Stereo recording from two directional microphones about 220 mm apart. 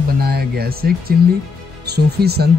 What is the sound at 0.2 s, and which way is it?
Music, 45° right (ahead or behind).